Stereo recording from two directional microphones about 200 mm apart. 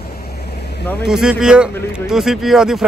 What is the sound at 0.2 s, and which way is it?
Vehicle, 55° left (ahead or behind).